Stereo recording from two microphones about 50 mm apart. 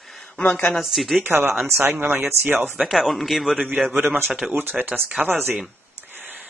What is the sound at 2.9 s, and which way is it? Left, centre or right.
Speech, centre.